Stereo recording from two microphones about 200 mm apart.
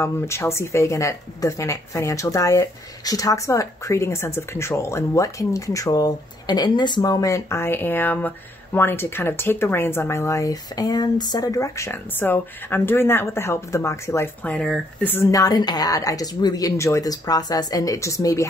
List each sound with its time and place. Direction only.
0.0 s speech: 15° left (ahead or behind)